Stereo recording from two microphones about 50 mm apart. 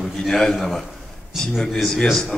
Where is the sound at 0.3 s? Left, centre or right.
Centre.